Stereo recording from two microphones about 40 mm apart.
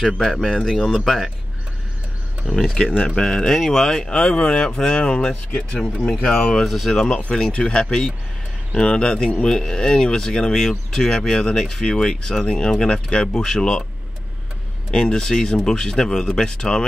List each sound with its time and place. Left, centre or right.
0.0 s speech: centre
0.6 s speech: centre
0.9 s speech: centre
2.4 s speech: centre
4.2 s speech: left
6.0 s speech: centre
6.7 s speech: centre
7.2 s speech: left
14.9 s speech: left